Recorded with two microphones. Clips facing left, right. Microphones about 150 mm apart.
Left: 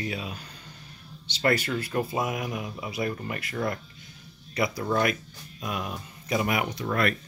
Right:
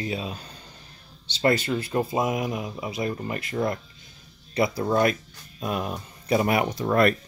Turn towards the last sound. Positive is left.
turn(degrees=-35)  # may be behind; listen again after turning